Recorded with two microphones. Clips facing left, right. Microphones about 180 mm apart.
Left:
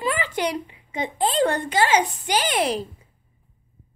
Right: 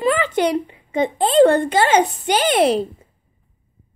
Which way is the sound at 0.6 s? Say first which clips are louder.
Right 9 dB; 45° right (ahead or behind).